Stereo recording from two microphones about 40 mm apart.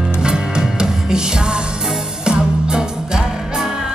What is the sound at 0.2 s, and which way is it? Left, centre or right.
Music, centre.